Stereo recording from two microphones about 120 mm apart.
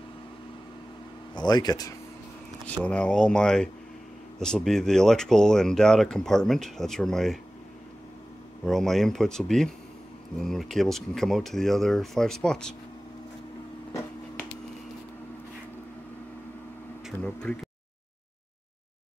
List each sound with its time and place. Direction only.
1.3 s speech: 35° left (ahead or behind)
2.8 s speech: 10° left (ahead or behind)
8.6 s speech: 5° left (ahead or behind)
17.2 s speech: 10° left (ahead or behind)